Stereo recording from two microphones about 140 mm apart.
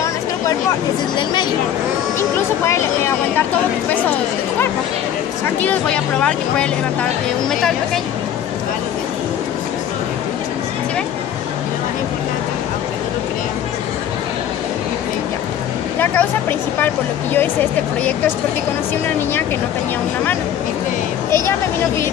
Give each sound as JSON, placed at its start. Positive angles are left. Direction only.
{"t": 1.1, "sound": "speech", "side_deg": 30}
{"t": 2.1, "sound": "speech", "side_deg": 20}
{"t": 5.6, "sound": "speech", "side_deg": 10}
{"t": 16.0, "sound": "speech", "side_deg": 15}